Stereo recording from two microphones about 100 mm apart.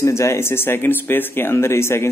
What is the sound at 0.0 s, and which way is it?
Speech, 30° left (ahead or behind).